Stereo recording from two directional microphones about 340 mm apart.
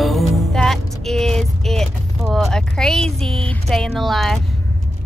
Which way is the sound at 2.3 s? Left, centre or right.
Centre.